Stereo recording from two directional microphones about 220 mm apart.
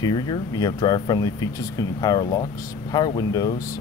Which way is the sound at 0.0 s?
20° left (ahead or behind).